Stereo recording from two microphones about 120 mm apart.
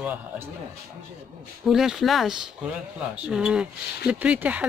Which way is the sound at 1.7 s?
5° right (ahead or behind).